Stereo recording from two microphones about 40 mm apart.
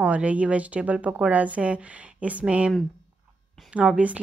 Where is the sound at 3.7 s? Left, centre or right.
Right.